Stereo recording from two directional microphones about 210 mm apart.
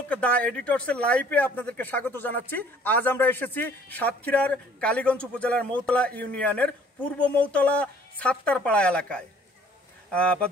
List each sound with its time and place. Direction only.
0.1 s a man's voice: 5° left (ahead or behind)